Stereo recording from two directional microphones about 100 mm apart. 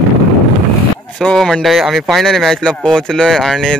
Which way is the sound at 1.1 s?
5° left (ahead or behind).